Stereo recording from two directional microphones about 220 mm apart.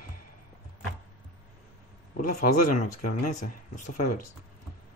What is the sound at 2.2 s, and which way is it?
Speech, 35° left (ahead or behind).